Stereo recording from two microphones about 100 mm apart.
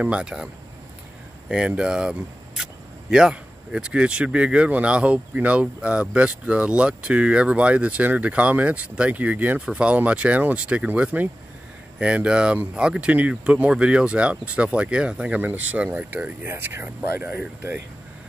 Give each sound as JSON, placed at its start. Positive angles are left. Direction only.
{"t": 0.0, "sound": "speech", "side_deg": -10}
{"t": 1.5, "sound": "speech", "side_deg": -10}